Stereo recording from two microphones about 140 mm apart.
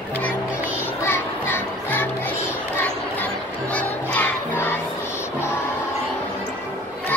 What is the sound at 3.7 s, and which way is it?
Music, 10° left (ahead or behind).